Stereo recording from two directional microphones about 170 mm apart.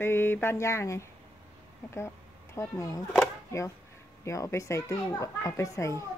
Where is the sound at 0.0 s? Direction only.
15° left (ahead or behind).